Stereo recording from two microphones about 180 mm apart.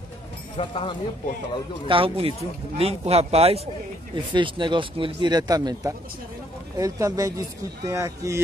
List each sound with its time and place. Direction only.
0.6 s speech: 30° left (ahead or behind)
1.9 s speech: 30° right (ahead or behind)